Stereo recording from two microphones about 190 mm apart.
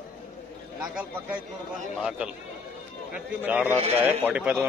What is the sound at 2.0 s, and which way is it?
A man's voice, 5° right (ahead or behind).